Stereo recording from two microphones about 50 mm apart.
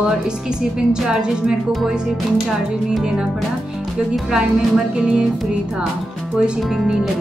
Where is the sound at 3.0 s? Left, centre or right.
Centre.